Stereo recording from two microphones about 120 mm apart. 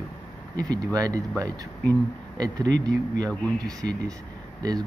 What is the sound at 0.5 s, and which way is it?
Speech, 30° right (ahead or behind).